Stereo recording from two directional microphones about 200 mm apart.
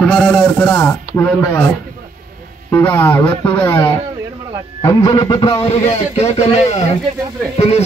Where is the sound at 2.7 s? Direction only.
10° left (ahead or behind).